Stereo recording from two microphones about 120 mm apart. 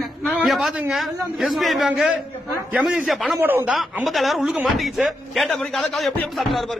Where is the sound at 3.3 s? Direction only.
15° right (ahead or behind).